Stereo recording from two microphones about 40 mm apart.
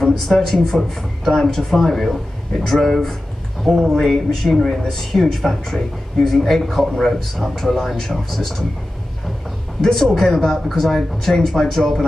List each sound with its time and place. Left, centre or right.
0.0 s speech: centre
3.7 s speech: centre
4.0 s speech: centre
9.8 s a man's voice: centre